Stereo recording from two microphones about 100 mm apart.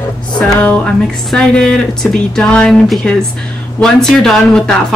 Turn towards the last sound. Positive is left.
turn(degrees=5)  # may be behind; listen again after turning